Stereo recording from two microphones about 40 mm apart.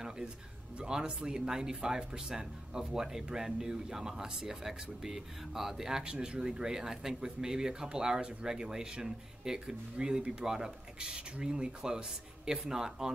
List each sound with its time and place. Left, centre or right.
0.7 s speech: right